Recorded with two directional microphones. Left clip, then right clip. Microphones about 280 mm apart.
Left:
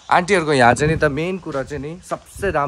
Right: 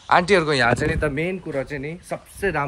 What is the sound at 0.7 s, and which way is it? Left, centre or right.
Speech, left.